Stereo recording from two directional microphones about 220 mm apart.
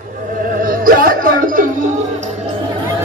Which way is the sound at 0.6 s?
40° right (ahead or behind).